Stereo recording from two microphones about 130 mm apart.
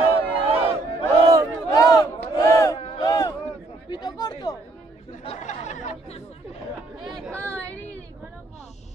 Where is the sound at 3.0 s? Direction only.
30° left (ahead or behind).